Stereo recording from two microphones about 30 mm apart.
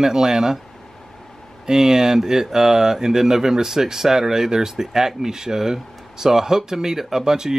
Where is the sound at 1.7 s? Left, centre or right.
Centre.